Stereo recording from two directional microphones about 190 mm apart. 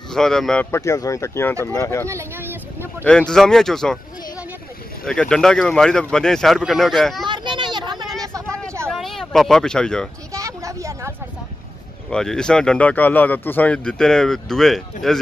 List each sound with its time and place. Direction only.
0.1 s speech: centre (ahead or behind)
0.7 s speech: 15° left (ahead or behind)
2.0 s vehicle: 15° right (ahead or behind)
3.0 s speech: 5° left (ahead or behind)
7.2 s a sound: 25° right (ahead or behind)
8.2 s vehicle: 15° right (ahead or behind)
8.8 s a sound: centre (ahead or behind)
10.3 s a sound: 15° right (ahead or behind)
12.1 s speech: 5° left (ahead or behind)